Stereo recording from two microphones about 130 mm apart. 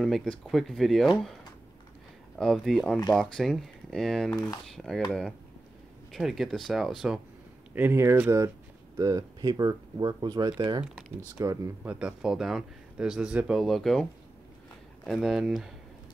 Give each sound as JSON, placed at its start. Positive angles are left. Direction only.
{"t": 0.0, "sound": "speech", "side_deg": 5}
{"t": 2.3, "sound": "speech", "side_deg": 5}
{"t": 6.1, "sound": "speech", "side_deg": 0}
{"t": 7.7, "sound": "speech", "side_deg": -15}
{"t": 11.9, "sound": "speech", "side_deg": -5}
{"t": 15.0, "sound": "speech", "side_deg": 0}